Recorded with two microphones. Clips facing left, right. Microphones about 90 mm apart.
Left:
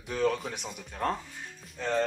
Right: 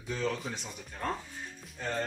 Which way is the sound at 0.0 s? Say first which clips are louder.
Left 5 dB; 60° left (ahead or behind).